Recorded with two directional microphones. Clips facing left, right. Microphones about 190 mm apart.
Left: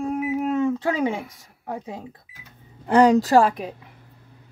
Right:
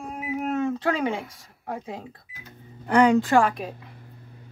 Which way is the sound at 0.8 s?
15° left (ahead or behind).